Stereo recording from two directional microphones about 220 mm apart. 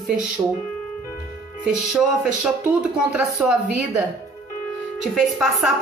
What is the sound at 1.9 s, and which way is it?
A woman's voice, 5° right (ahead or behind).